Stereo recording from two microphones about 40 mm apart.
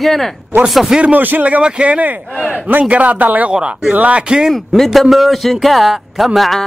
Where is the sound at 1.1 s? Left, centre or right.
Right.